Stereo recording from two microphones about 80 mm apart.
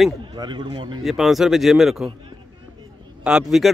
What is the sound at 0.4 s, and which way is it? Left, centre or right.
Speech, right.